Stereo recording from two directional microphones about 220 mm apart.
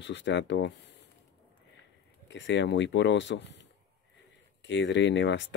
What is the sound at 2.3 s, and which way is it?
Speech, 55° left (ahead or behind).